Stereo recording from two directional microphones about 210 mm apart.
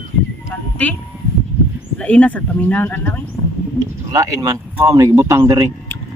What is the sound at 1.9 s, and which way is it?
Speech, 5° left (ahead or behind).